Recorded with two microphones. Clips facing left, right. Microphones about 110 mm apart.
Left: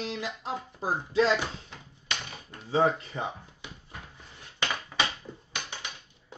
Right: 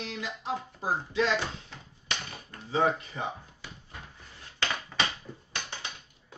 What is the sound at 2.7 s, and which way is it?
Speech, 25° left (ahead or behind).